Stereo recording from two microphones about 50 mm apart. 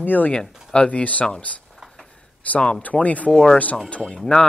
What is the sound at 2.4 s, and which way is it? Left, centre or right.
Speech, left.